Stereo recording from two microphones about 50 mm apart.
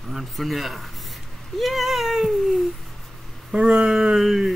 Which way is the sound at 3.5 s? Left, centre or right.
Centre.